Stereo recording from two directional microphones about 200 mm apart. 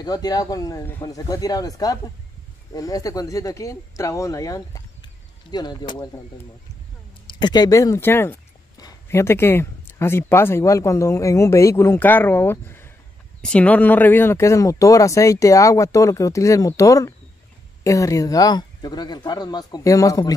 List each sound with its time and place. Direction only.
0.0 s speech: 20° left (ahead or behind)
7.3 s speech: 20° left (ahead or behind)